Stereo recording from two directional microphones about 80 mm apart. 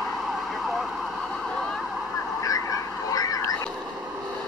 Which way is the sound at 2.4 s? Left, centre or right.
Left.